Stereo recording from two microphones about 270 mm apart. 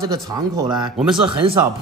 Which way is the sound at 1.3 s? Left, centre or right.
Centre.